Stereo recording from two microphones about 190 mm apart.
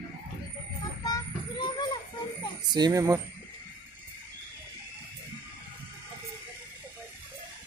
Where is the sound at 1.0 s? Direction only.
25° left (ahead or behind).